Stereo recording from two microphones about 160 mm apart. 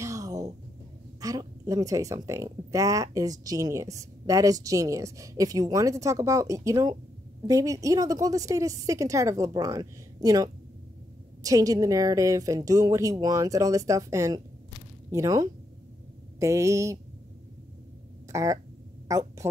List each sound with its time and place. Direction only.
0.0 s a sound: 20° right (ahead or behind)
1.2 s speech: 20° right (ahead or behind)
18.3 s a woman's voice: 20° right (ahead or behind)